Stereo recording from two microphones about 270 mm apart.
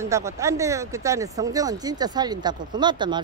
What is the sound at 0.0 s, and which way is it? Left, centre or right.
Speech, centre.